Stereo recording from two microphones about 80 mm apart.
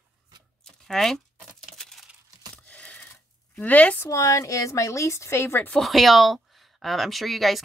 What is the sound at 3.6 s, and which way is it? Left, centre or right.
Speech, centre.